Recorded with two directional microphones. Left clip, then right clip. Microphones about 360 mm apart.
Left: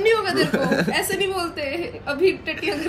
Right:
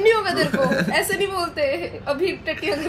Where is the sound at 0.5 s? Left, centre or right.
Centre.